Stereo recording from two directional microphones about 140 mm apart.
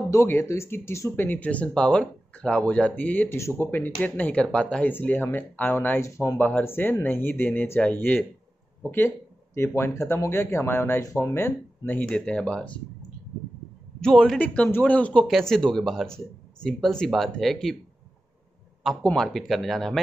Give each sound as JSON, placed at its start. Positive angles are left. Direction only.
{"t": 0.1, "sound": "speech", "side_deg": 20}
{"t": 14.0, "sound": "a man's voice", "side_deg": 0}
{"t": 18.8, "sound": "a man's voice", "side_deg": 0}